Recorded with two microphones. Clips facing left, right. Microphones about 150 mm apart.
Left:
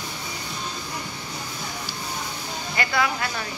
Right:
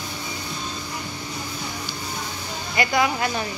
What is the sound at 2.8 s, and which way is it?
Speech, 15° right (ahead or behind).